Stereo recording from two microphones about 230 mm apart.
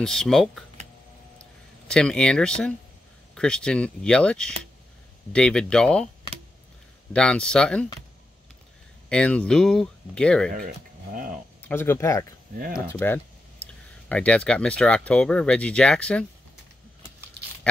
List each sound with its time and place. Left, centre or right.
0.0 s speech: centre
1.4 s a sound: centre
3.3 s speech: centre
7.1 s speech: centre
9.1 s speech: centre
11.6 s speech: centre
12.5 s speech: right
12.9 s speech: centre